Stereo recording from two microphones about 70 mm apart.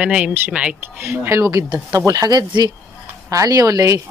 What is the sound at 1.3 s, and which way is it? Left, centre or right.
Speech, right.